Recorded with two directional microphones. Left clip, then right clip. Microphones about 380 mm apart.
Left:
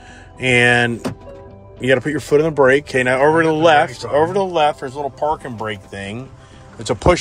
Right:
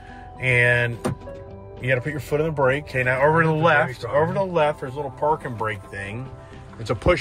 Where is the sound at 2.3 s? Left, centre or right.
Left.